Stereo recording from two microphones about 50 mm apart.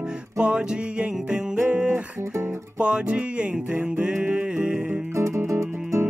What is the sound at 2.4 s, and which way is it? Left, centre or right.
Speech, right.